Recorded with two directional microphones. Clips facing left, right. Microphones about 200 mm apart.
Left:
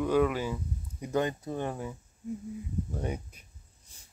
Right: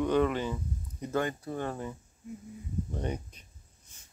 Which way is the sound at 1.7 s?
5° left (ahead or behind).